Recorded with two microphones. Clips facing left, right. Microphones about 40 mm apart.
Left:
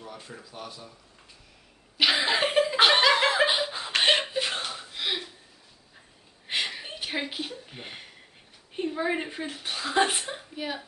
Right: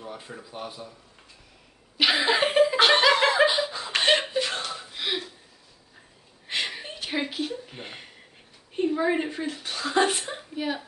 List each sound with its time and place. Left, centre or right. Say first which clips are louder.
0.0 s speech: right 3 dB; centre
2.0 s laughter: right 2 dB; centre
3.4 s laughter: right 2 dB; centre
4.0 s a sound: right 1 dB; centre
4.6 s chuckle: right 1 dB; centre
6.5 s a sound: even; centre
7.2 s speech: right 4 dB; centre
7.7 s speech: right 1 dB; centre
10.3 s a woman's voice: right 4 dB; centre